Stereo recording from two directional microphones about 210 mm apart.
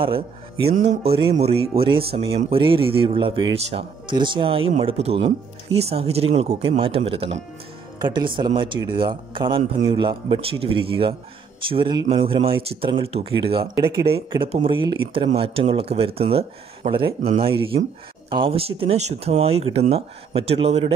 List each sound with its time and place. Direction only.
0.0 s speech: 25° right (ahead or behind)